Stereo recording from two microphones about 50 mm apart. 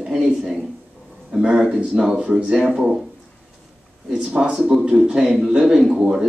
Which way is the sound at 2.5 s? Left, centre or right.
Centre.